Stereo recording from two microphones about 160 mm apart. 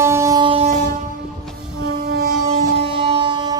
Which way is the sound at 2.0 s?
75° right (ahead or behind).